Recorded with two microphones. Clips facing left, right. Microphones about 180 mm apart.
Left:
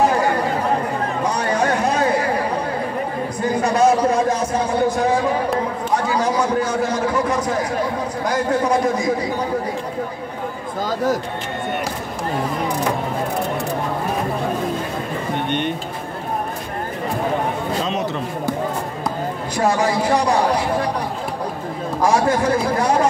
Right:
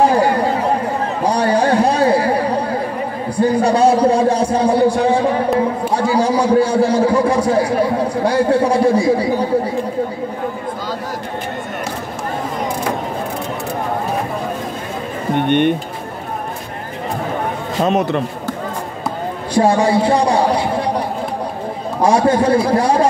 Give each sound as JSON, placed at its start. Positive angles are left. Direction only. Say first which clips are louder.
{"t": 0.1, "sound": "chatter", "louder": "right 4 dB", "side_deg": -30}
{"t": 3.3, "sound": "a sound", "louder": "right 5 dB", "side_deg": -30}
{"t": 8.2, "sound": "a man's voice", "louder": "right 5 dB", "side_deg": -30}
{"t": 17.8, "sound": "a sound", "louder": "right 7 dB", "side_deg": -55}
{"t": 19.5, "sound": "a man's voice", "louder": "right 6 dB", "side_deg": -30}
{"t": 22.0, "sound": "a man's voice", "louder": "right 4 dB", "side_deg": -30}